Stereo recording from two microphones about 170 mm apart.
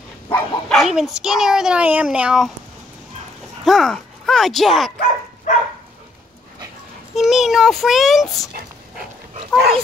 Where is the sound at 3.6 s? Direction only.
Centre (ahead or behind).